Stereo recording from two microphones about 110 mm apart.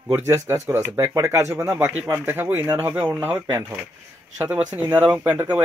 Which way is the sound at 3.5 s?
30° right (ahead or behind).